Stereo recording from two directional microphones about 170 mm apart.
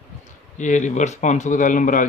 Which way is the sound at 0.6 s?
45° left (ahead or behind).